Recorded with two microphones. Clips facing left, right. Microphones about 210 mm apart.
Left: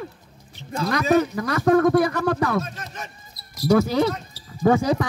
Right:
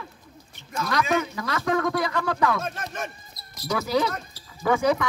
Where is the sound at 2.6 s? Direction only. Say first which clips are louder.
Right 4 dB; 55° right (ahead or behind).